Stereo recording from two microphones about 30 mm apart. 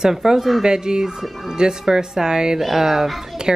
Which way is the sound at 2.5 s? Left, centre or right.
Centre.